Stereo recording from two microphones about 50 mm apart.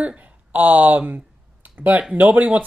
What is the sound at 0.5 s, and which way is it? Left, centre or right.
Speech, right.